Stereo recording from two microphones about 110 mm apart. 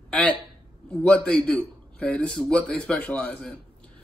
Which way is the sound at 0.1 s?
10° left (ahead or behind).